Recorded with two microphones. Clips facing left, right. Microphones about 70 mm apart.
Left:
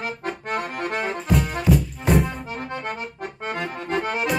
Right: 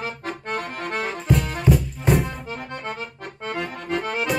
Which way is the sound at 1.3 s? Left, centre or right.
Centre.